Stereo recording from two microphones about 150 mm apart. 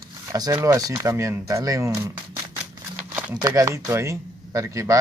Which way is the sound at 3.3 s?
25° right (ahead or behind).